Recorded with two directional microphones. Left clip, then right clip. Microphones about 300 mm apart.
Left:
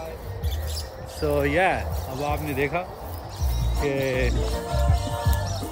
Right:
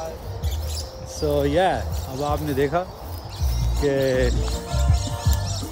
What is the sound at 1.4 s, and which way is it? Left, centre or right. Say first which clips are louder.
Speech: right 1 dB; centre.